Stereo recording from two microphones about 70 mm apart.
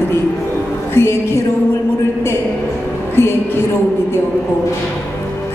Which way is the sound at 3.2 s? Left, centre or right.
Left.